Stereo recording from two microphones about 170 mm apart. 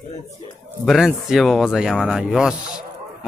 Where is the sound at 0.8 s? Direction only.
Centre (ahead or behind).